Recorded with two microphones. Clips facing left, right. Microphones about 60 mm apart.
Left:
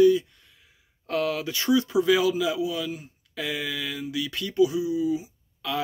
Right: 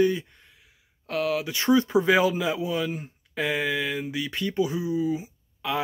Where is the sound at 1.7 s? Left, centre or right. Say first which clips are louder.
Right 1 dB; right.